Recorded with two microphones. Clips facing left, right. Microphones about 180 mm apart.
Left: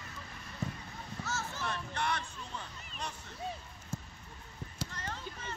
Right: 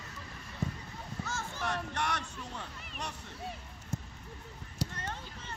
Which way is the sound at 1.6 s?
75° right (ahead or behind).